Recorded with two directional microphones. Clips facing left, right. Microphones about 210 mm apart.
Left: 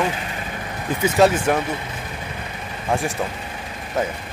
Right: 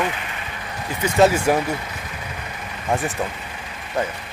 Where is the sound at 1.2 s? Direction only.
10° right (ahead or behind).